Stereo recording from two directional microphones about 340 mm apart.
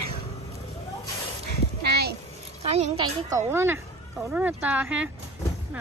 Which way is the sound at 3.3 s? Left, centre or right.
Centre.